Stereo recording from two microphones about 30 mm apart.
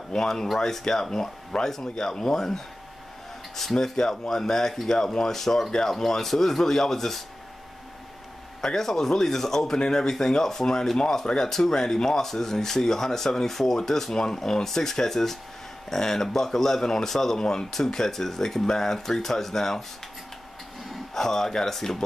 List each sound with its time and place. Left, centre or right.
0.1 s speech: left
3.7 s speech: centre
8.5 s speech: centre
21.1 s speech: centre